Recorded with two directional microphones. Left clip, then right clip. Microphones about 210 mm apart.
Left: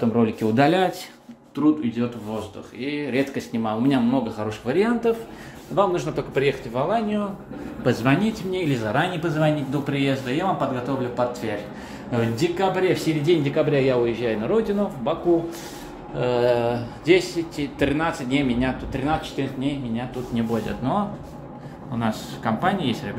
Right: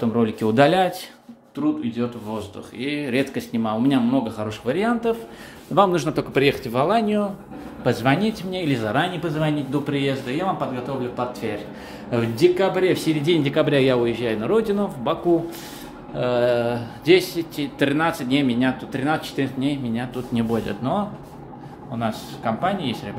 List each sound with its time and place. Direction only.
0.0 s speech: 5° right (ahead or behind)
2.8 s speech: 25° right (ahead or behind)
3.5 s speech: 10° right (ahead or behind)
5.8 s speech: 30° right (ahead or behind)
7.8 s speech: 20° right (ahead or behind); by 10.7 s centre (ahead or behind)
12.1 s speech: 20° right (ahead or behind)
16.2 s speech: 5° right (ahead or behind); by 21.0 s 20° right (ahead or behind)
22.0 s speech: centre (ahead or behind)